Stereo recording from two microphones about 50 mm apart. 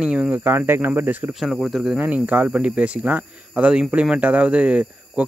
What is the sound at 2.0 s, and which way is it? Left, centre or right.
Speech, right.